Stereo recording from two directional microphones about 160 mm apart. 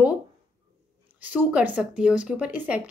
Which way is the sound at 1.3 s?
10° right (ahead or behind).